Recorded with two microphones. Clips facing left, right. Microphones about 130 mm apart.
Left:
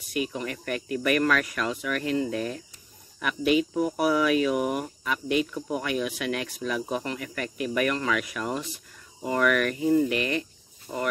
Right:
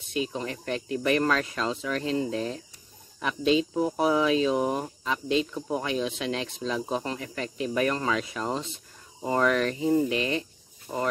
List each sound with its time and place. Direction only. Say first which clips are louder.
0.0 s speech: even; 25° right (ahead or behind)
10.9 s speech: right 1 dB; 5° right (ahead or behind)